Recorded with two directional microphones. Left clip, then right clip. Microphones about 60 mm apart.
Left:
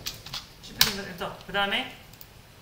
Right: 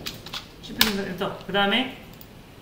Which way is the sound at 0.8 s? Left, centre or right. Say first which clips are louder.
Right 2 dB; left.